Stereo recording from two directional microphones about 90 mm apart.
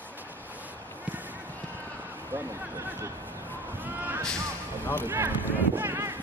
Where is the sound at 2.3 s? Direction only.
25° right (ahead or behind).